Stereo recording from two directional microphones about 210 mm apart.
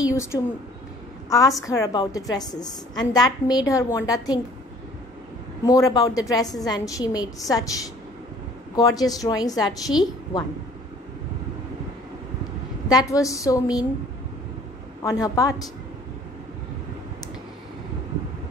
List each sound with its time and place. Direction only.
0.0 s a woman's voice: 15° left (ahead or behind)
5.6 s a woman's voice: 15° left (ahead or behind)
8.7 s a woman's voice: 15° left (ahead or behind)
12.8 s a woman's voice: 15° left (ahead or behind)
15.0 s a woman's voice: 15° left (ahead or behind)